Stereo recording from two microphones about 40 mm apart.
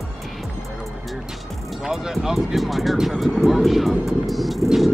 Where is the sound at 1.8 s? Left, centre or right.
Centre.